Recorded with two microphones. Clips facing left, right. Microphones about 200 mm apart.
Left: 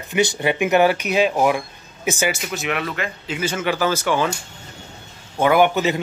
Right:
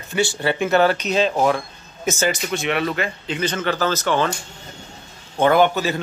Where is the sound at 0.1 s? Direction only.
20° left (ahead or behind).